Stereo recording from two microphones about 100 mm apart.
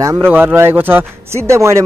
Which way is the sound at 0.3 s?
20° right (ahead or behind).